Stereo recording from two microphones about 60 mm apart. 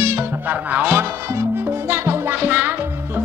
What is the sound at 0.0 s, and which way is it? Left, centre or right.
Music, right.